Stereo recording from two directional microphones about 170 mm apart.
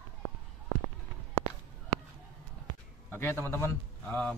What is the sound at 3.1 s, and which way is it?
A man's voice, 15° left (ahead or behind).